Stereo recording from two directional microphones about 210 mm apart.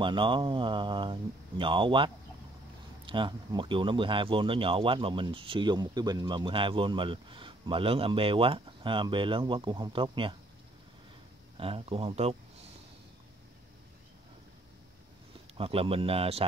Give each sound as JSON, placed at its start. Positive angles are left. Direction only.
{"t": 0.0, "sound": "speech", "side_deg": -25}
{"t": 11.5, "sound": "speech", "side_deg": -25}
{"t": 15.5, "sound": "speech", "side_deg": -25}